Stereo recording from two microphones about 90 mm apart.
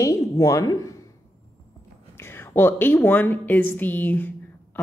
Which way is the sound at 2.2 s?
25° left (ahead or behind).